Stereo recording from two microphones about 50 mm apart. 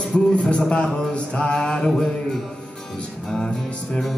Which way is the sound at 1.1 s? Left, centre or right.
Centre.